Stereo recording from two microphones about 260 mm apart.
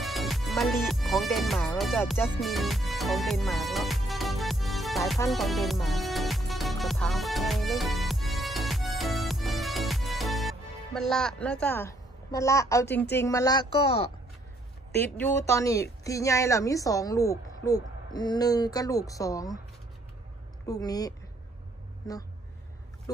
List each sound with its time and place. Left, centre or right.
0.0 s music: centre
11.6 s a woman's voice: centre
15.1 s a woman's voice: centre
20.6 s a woman's voice: centre
23.1 s a woman's voice: centre